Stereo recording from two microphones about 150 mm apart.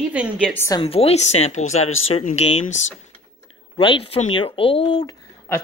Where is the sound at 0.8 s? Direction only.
40° left (ahead or behind).